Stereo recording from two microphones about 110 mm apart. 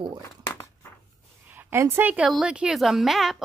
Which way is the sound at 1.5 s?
25° right (ahead or behind).